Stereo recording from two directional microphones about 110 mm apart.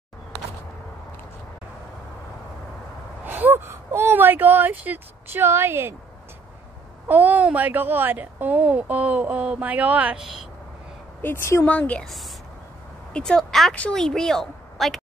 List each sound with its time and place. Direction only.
3.3 s speech: 15° right (ahead or behind)
7.1 s speech: 15° right (ahead or behind)
11.1 s a woman's voice: 20° left (ahead or behind)
13.1 s a woman's voice: 5° left (ahead or behind)